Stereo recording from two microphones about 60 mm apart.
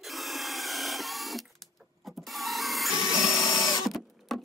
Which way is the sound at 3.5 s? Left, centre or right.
Left.